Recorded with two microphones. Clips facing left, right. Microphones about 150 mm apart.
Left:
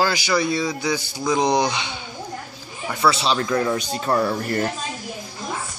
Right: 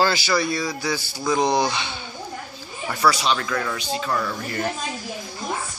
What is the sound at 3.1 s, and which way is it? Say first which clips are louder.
Speech: left 2 dB; 25° left (ahead or behind).